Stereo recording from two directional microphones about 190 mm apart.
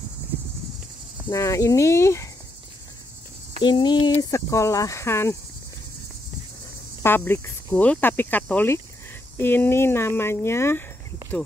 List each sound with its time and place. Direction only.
1.3 s speech: 15° left (ahead or behind)
3.6 s speech: 25° left (ahead or behind)
7.0 s speech: 10° left (ahead or behind)